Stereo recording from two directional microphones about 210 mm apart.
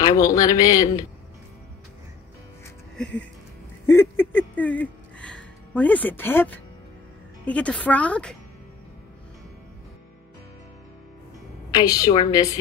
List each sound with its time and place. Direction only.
0.0 s a man's voice: 15° left (ahead or behind)
3.0 s a man's voice: 5° left (ahead or behind)
3.8 s a sound: 10° left (ahead or behind)
7.4 s a man's voice: 5° left (ahead or behind)
11.7 s a man's voice: 15° left (ahead or behind)